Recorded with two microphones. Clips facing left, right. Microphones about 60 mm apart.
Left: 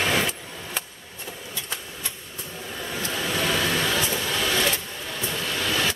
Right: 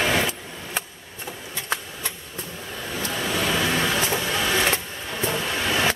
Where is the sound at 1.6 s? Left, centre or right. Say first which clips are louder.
Right 8 dB; right.